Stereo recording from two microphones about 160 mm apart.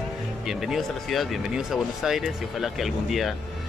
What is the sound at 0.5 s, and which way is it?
Speech, centre (ahead or behind).